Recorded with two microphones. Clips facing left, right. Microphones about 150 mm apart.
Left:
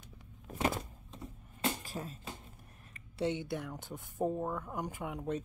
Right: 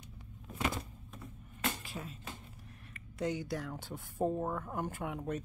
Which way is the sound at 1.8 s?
40° left (ahead or behind).